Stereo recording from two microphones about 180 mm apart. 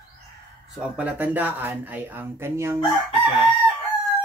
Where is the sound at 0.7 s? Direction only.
5° right (ahead or behind).